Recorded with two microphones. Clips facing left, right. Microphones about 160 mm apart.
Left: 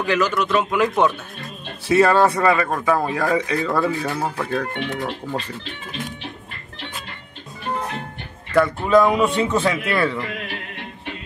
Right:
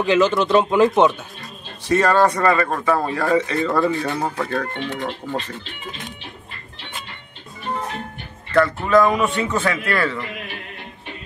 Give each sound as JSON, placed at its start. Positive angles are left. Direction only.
{"t": 0.0, "sound": "speech", "side_deg": -20}
{"t": 1.9, "sound": "speech", "side_deg": 5}
{"t": 8.8, "sound": "speech", "side_deg": 15}